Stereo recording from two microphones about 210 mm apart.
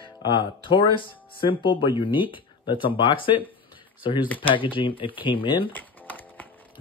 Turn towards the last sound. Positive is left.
turn(degrees=10)  # may be behind; listen again after turning